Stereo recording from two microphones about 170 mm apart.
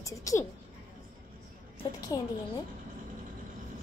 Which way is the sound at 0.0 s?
20° left (ahead or behind).